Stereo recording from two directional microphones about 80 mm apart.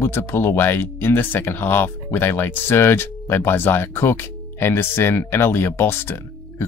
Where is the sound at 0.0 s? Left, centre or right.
Left.